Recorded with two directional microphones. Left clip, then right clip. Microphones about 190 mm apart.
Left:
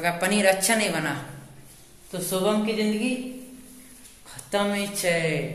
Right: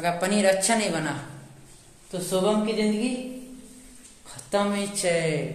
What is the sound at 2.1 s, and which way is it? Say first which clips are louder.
Speech: right 1 dB; 10° right (ahead or behind).